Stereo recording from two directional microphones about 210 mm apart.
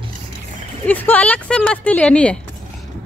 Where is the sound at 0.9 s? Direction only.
10° left (ahead or behind).